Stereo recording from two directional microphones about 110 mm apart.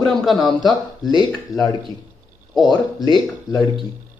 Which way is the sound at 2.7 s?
40° left (ahead or behind).